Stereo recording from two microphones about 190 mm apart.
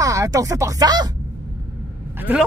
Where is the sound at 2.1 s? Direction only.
10° right (ahead or behind).